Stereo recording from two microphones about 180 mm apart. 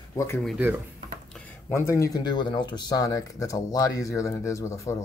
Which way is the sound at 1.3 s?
15° left (ahead or behind).